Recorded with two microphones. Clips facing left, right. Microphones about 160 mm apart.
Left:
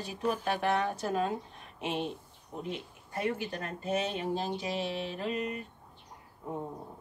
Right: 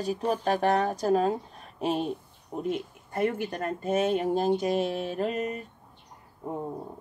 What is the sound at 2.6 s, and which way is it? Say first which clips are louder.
Speech: right 10 dB; 50° right (ahead or behind).